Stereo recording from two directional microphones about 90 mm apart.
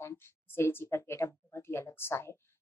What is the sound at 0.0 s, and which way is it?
Speech, 30° left (ahead or behind).